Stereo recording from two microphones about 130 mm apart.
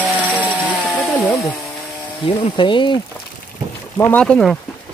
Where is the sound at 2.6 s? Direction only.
40° left (ahead or behind).